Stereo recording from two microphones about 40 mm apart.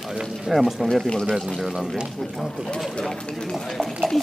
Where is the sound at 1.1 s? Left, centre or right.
Centre.